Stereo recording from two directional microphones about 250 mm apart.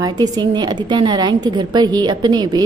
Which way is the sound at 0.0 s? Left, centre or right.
Centre.